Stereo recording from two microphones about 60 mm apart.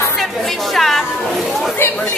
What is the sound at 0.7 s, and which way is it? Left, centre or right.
Speech, centre.